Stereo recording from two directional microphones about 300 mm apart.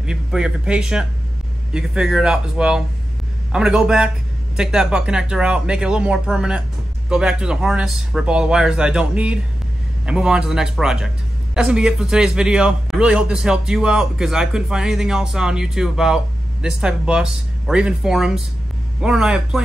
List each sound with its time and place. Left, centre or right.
0.0 s a man's voice: centre